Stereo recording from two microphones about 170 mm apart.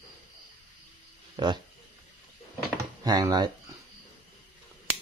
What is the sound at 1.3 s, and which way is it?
Speech, 25° right (ahead or behind).